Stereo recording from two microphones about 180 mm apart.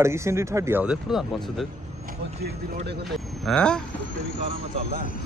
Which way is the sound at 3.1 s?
5° left (ahead or behind).